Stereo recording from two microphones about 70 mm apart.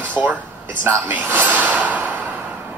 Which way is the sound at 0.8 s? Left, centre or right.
Right.